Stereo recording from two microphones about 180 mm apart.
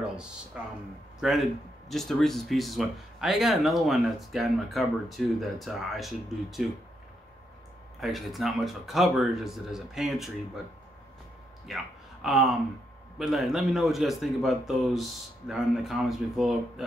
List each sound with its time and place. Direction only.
0.5 s speech: 5° right (ahead or behind)
8.0 s speech: centre (ahead or behind)
11.6 s a sound: centre (ahead or behind)
13.2 s speech: centre (ahead or behind)